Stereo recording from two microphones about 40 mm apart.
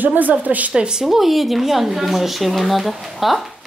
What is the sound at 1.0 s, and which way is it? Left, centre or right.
Speech, centre.